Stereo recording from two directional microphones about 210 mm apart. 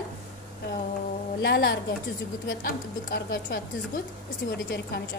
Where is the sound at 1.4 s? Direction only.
50° left (ahead or behind).